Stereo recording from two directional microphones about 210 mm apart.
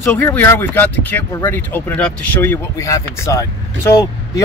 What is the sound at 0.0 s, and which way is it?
Speech, 10° left (ahead or behind).